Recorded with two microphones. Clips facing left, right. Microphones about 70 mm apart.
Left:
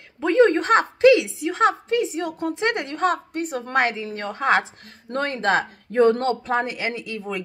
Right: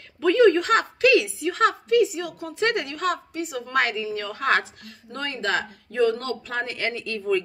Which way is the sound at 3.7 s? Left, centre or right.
Left.